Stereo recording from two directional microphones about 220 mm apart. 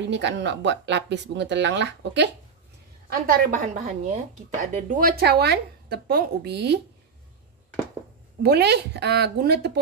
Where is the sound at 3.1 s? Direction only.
40° right (ahead or behind).